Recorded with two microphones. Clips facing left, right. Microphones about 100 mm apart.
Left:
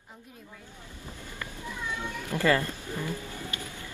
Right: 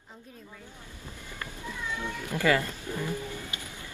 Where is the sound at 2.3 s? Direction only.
15° right (ahead or behind).